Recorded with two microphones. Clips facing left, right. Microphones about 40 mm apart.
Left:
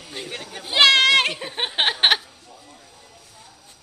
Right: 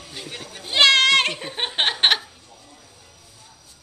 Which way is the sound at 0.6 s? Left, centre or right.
Centre.